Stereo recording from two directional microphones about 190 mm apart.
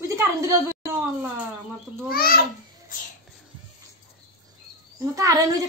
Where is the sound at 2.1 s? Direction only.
50° left (ahead or behind).